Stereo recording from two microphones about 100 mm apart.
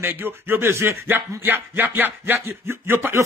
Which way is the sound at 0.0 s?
20° right (ahead or behind).